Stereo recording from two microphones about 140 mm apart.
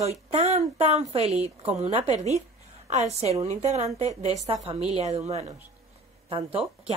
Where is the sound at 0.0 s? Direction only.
50° right (ahead or behind).